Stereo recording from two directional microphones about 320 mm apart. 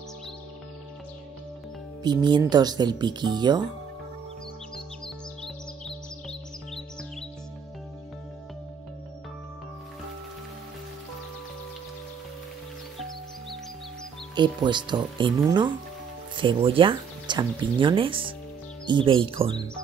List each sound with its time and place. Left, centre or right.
2.0 s speech: centre
4.7 s music: centre
14.3 s speech: centre